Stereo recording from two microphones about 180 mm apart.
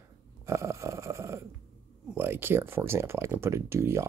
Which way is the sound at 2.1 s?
10° right (ahead or behind).